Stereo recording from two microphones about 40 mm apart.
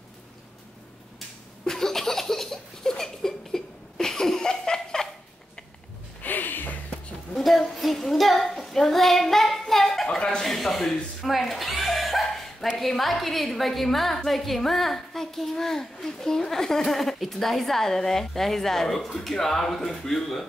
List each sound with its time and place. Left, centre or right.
1.7 s laughter: centre
6.2 s a sound: left
7.3 s a sound: centre
7.7 s child singing: centre
10.0 s speech: left
10.4 s chuckle: centre
12.7 s a woman's voice: centre